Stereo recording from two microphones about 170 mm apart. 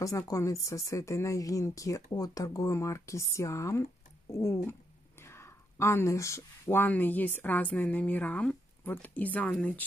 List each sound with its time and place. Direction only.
0.3 s speech: 20° left (ahead or behind)